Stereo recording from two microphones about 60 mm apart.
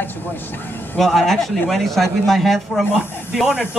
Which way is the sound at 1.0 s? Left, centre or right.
Centre.